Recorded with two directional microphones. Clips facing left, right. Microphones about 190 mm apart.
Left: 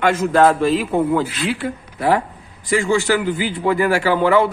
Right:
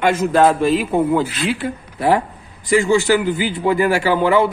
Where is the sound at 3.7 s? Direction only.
20° right (ahead or behind).